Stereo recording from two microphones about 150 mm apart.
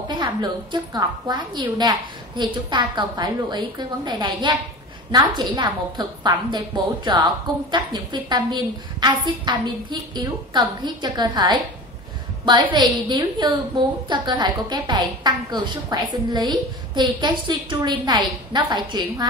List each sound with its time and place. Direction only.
0.1 s a woman's voice: 30° right (ahead or behind)